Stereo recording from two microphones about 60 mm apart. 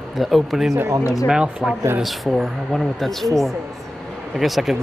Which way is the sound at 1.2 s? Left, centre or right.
Centre.